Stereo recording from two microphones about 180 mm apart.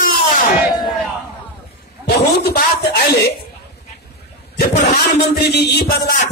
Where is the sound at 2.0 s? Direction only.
60° left (ahead or behind).